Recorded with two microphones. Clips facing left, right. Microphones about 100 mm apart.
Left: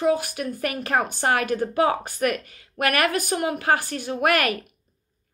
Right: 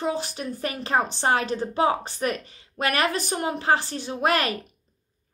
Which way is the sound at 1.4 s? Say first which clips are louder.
Left 3 dB; 55° left (ahead or behind).